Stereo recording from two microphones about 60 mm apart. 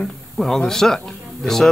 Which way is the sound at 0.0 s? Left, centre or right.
Centre.